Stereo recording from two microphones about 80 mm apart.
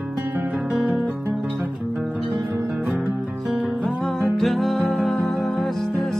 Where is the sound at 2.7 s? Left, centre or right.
Centre.